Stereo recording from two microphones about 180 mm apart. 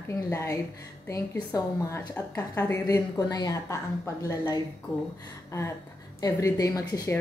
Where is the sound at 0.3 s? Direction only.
15° left (ahead or behind).